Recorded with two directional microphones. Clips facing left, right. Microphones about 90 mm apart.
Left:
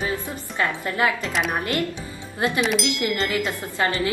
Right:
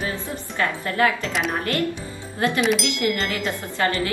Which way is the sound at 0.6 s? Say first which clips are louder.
Right 1 dB; 20° left (ahead or behind).